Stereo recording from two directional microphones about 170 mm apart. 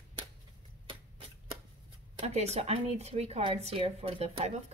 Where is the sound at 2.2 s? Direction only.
40° right (ahead or behind).